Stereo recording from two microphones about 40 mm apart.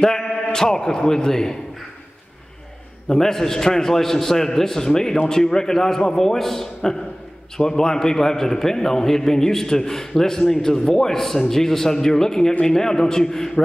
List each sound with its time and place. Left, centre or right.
0.0 s a man's voice: centre
3.1 s a man's voice: centre